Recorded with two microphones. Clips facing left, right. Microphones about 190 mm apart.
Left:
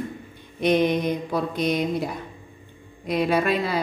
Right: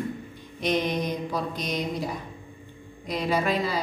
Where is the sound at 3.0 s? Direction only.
60° left (ahead or behind).